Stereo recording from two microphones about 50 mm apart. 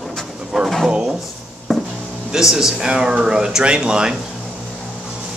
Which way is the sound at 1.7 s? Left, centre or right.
Centre.